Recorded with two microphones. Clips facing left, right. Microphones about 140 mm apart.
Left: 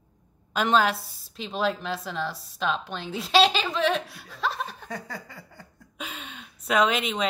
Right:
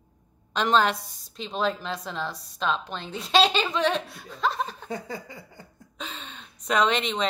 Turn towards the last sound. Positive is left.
turn(degrees=5)  # may be behind; listen again after turning